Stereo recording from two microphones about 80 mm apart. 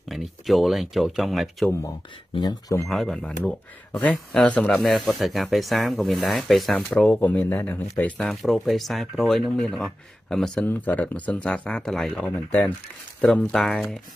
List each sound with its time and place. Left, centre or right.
0.1 s speech: centre
2.9 s speech: centre
6.9 s speech: centre
8.2 s speech: centre
10.7 s speech: centre
12.2 s speech: left
13.3 s speech: centre